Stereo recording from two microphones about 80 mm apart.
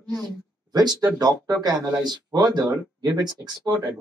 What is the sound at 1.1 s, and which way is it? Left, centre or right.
Speech, right.